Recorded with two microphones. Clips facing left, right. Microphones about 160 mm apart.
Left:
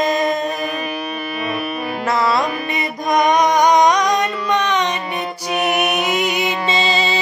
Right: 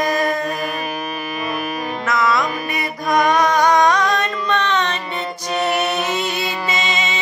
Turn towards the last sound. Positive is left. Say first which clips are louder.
# left 4 dB
turn(degrees=35)  # may be behind; listen again after turning